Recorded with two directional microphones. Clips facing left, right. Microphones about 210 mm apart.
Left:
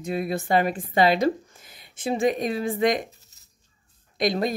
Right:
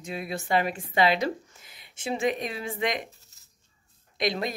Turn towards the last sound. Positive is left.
turn(degrees=45)  # may be behind; listen again after turning